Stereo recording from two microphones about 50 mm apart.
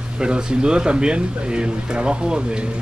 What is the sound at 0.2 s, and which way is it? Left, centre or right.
Speech, centre.